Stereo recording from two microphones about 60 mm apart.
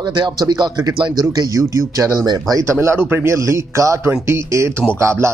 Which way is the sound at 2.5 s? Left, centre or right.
Right.